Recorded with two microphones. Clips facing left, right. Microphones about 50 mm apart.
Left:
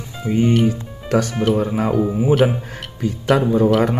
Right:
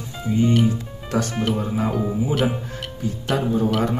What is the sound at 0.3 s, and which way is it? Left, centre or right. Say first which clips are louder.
Speech: left 3 dB; left.